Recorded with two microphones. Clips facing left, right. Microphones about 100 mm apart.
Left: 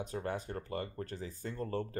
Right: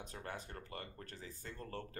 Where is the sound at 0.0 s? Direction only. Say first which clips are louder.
Left 9 dB; 25° left (ahead or behind).